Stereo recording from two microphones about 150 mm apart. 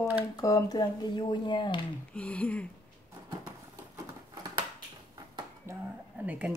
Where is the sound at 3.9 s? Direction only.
25° right (ahead or behind).